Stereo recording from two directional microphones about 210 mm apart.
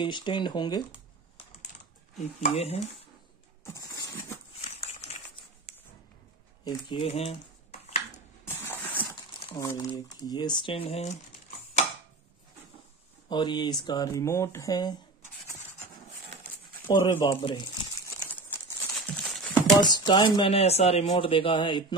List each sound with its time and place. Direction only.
0.0 s speech: 20° left (ahead or behind)
2.4 s speech: 30° left (ahead or behind)
3.6 s a sound: 15° left (ahead or behind)
4.6 s a sound: 30° left (ahead or behind)
6.6 s dishes: 25° left (ahead or behind)
8.5 s printer: 10° left (ahead or behind)
9.4 s speech: 20° left (ahead or behind)
13.3 s speech: 20° left (ahead or behind)
16.8 s speech: 25° left (ahead or behind)
18.3 s a sound: 5° left (ahead or behind)
19.8 s speech: 20° left (ahead or behind)